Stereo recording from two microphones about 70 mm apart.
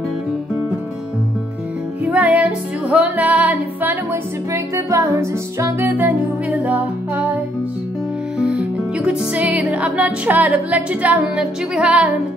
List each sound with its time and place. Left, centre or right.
2.0 s music: right
4.1 s music: right
5.9 s music: right
8.4 s music: centre